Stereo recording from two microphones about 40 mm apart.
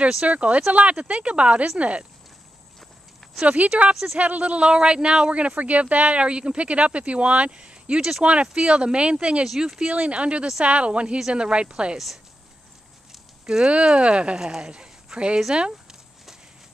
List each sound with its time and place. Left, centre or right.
0.2 s speech: right
3.4 s speech: right
3.9 s speech: centre
4.2 s speech: right
4.6 s speech: right
9.8 s speech: right
13.5 s speech: centre
13.8 s speech: right
14.4 s speech: centre